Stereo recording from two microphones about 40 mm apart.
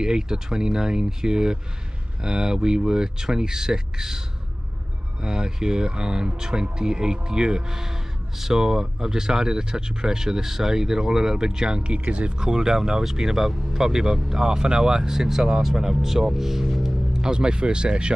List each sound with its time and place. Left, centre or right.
0.0 s speech: centre
5.2 s speech: centre